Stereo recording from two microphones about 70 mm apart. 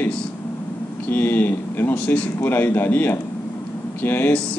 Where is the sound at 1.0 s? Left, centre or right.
Left.